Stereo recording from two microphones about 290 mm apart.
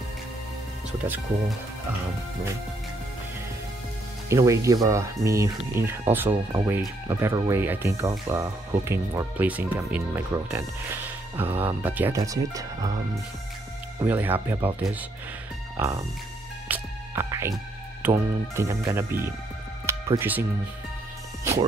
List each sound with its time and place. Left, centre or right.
4.3 s speech: centre
14.0 s speech: centre
16.6 s music: centre
18.0 s speech: centre